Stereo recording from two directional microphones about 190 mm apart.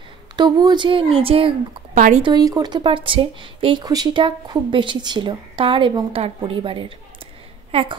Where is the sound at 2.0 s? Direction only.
40° right (ahead or behind).